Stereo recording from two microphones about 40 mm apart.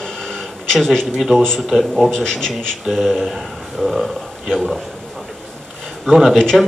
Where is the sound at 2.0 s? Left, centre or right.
Centre.